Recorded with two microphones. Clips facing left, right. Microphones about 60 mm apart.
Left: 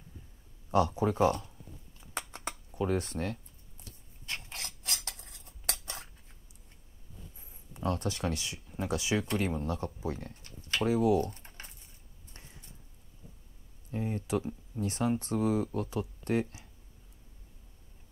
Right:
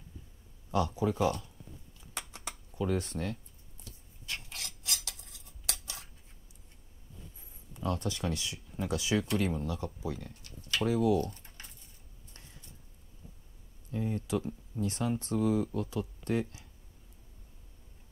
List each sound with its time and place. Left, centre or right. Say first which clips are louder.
0.7 s speech: left 3 dB; left
2.0 s a sound: left 4 dB; left
2.7 s speech: left 1 dB; left
4.3 s cutlery: left 1 dB; left
7.7 s speech: left 1 dB; left
9.6 s speech: left 2 dB; left
10.0 s a sound: left 2 dB; left
10.9 s speech: left 1 dB; left
11.3 s typing: left 2 dB; left
13.9 s speech: even; left